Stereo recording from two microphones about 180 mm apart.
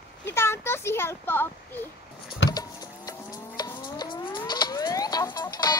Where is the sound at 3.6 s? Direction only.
20° left (ahead or behind).